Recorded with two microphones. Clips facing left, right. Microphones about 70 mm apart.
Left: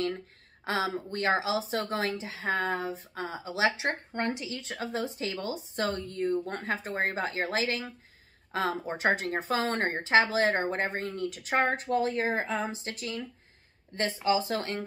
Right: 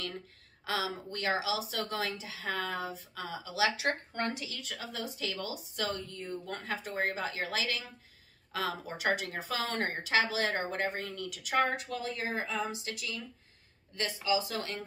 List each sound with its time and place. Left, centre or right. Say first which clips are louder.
0.7 s a woman's voice: left 4 dB; left